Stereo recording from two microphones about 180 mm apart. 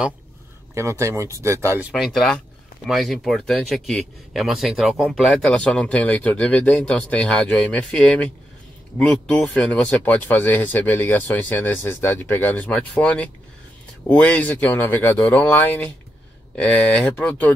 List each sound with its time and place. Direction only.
0.7 s speech: 15° right (ahead or behind)
1.9 s speech: centre (ahead or behind)